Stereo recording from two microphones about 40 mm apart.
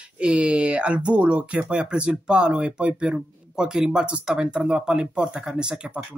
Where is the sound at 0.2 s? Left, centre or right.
Right.